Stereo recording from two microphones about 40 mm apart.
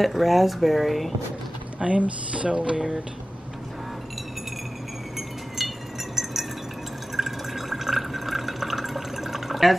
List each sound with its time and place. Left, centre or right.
0.0 s speech: centre
1.8 s speech: right
5.6 s a sound: centre
7.2 s drip: centre